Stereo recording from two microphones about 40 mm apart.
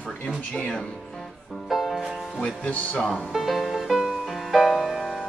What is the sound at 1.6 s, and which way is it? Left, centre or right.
Music, centre.